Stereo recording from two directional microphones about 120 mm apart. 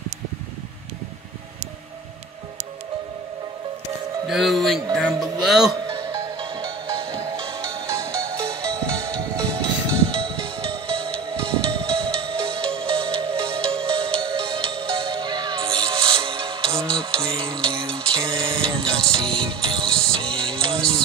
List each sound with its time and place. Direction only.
4.3 s speech: centre (ahead or behind)
5.9 s music: 35° right (ahead or behind)
10.0 s music: 45° right (ahead or behind)
16.9 s a sound: 45° right (ahead or behind)
18.1 s music: 45° right (ahead or behind)